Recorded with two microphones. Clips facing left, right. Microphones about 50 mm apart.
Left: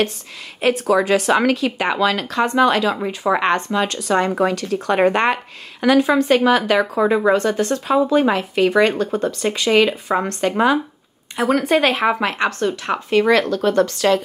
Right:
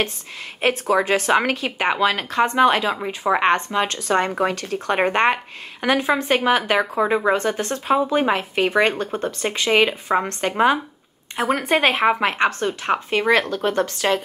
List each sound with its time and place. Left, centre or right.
0.6 s speech: right